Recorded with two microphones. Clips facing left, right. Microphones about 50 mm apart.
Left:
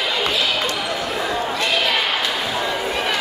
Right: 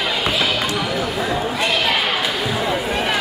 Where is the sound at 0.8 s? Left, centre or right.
Centre.